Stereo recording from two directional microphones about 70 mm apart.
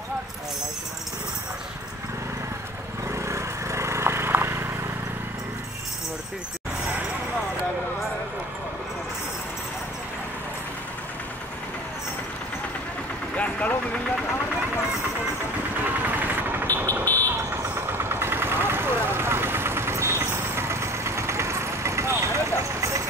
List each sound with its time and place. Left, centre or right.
3.1 s vehicle: right
13.4 s a sound: left
15.8 s vehicle: right
16.6 s vehicle: left
17.7 s vehicle: right